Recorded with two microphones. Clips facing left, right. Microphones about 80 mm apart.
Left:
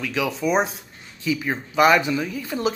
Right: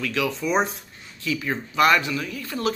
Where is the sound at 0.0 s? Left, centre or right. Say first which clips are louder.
Left 1 dB; centre.